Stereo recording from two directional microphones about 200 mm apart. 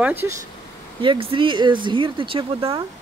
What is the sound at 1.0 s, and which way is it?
Speech, 25° right (ahead or behind).